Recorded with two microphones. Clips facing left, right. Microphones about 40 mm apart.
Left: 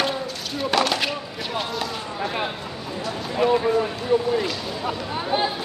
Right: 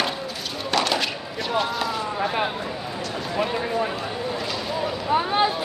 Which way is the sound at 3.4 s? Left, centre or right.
Centre.